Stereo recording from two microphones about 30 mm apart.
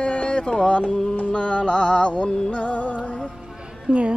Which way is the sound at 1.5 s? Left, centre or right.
Left.